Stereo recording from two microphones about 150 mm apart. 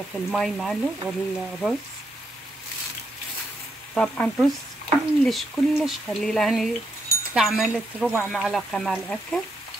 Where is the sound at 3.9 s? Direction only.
5° left (ahead or behind).